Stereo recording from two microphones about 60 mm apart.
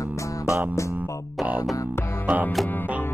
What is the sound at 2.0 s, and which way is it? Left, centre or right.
Music, left.